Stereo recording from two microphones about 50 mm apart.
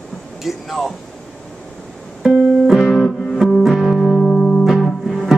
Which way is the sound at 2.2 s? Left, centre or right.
Centre.